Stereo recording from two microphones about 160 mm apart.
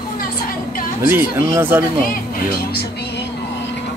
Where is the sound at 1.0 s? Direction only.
15° right (ahead or behind).